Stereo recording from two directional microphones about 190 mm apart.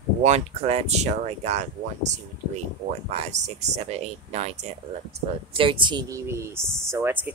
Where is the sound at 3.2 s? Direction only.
35° right (ahead or behind).